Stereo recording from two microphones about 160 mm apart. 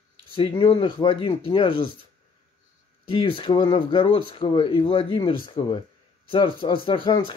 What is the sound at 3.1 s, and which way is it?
Speech, 35° left (ahead or behind).